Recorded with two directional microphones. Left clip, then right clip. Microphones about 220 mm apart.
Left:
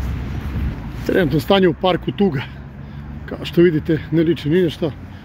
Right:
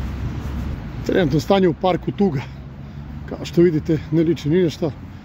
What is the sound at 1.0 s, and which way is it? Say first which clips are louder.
Speech: left 1 dB; 5° right (ahead or behind).